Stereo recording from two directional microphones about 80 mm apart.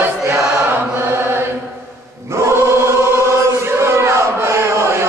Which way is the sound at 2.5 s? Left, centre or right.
Right.